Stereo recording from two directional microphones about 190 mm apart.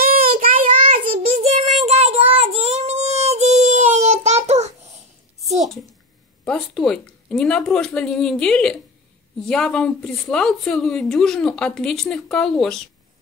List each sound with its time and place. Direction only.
0.0 s child singing: 50° right (ahead or behind)
1.4 s child singing: 35° right (ahead or behind)
4.5 s babbling: 35° right (ahead or behind)
6.4 s a woman's voice: 5° left (ahead or behind)